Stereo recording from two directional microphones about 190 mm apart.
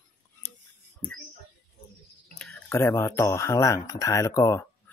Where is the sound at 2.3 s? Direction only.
10° left (ahead or behind).